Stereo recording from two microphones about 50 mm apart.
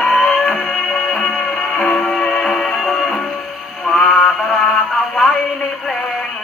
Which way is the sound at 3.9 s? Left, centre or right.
Centre.